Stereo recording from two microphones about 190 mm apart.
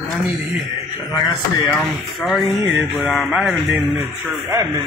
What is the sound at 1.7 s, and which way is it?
Music, 5° left (ahead or behind).